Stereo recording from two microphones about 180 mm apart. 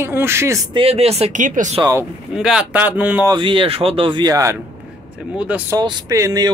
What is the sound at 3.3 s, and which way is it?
Speech, 30° right (ahead or behind).